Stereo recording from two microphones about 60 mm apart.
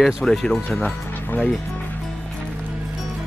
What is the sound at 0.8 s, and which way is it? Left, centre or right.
Speech, left.